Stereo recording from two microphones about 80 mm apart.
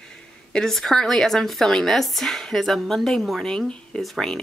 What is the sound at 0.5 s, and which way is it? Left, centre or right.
Speech, centre.